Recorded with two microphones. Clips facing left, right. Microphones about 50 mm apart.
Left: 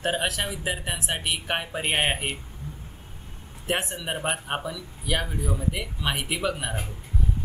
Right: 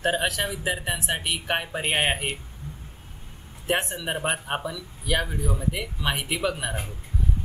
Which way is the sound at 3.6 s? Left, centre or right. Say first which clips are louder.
Right 2 dB; centre.